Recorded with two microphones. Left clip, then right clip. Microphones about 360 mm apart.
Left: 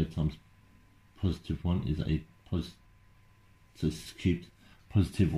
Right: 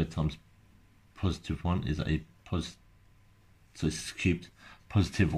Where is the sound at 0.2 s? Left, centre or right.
Right.